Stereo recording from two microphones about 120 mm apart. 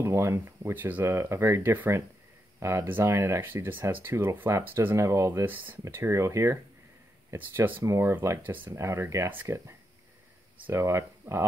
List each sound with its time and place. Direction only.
0.0 s speech: 20° right (ahead or behind)